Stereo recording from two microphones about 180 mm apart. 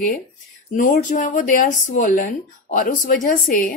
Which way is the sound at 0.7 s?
45° left (ahead or behind).